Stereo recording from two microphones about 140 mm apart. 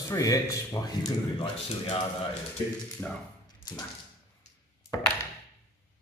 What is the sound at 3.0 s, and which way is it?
Speech, 10° left (ahead or behind).